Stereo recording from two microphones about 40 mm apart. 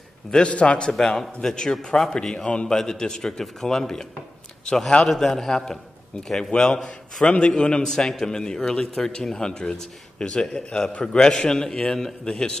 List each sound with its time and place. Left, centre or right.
0.3 s a man's voice: left
0.9 s a man's voice: centre; by 2.7 s left
2.7 s a man's voice: centre